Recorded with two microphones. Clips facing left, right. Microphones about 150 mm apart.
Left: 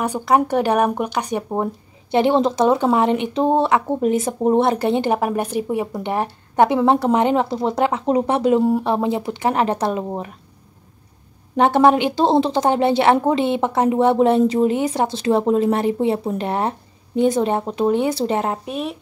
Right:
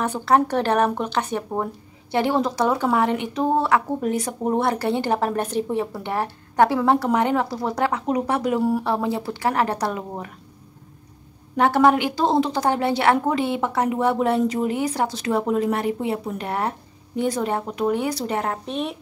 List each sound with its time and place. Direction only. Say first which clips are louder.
0.0 s speech: left 2 dB; 15° left (ahead or behind)
11.5 s speech: left 3 dB; 25° left (ahead or behind)
18.7 s speech: left 1 dB; centre (ahead or behind)